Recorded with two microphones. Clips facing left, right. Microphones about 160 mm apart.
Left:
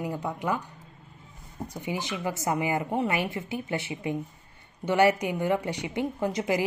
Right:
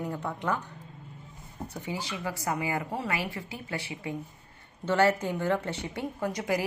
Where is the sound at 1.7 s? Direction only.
15° left (ahead or behind).